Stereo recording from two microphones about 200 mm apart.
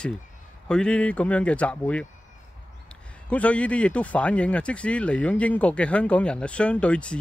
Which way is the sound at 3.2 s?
5° left (ahead or behind).